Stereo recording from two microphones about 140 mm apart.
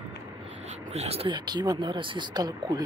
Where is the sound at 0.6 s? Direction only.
55° right (ahead or behind).